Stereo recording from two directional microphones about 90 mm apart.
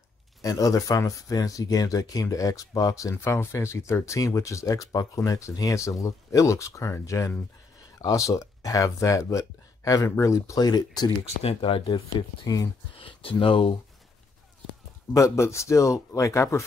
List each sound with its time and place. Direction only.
0.4 s speech: 40° left (ahead or behind)
11.4 s speech: 85° left
13.0 s speech: 75° left (ahead or behind)
15.1 s speech: 35° left (ahead or behind)